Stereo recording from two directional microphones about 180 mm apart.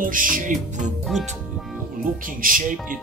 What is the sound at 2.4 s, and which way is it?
Speech, 50° right (ahead or behind).